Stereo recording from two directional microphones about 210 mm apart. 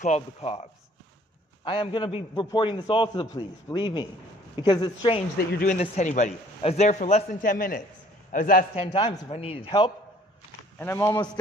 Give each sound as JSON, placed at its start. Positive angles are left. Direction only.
{"t": 0.0, "sound": "a man's voice", "side_deg": 30}
{"t": 5.5, "sound": "speech", "side_deg": 45}
{"t": 5.8, "sound": "a man's voice", "side_deg": 35}
{"t": 8.7, "sound": "a man's voice", "side_deg": 25}
{"t": 10.8, "sound": "speech", "side_deg": 10}